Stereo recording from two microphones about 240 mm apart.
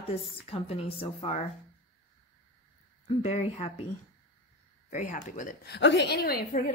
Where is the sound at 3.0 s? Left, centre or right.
Left.